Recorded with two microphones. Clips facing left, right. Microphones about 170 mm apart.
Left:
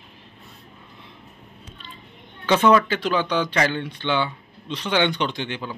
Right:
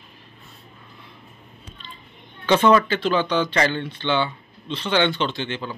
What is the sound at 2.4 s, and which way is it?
Speech, 10° left (ahead or behind).